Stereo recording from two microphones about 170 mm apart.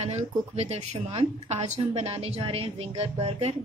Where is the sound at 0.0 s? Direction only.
40° right (ahead or behind).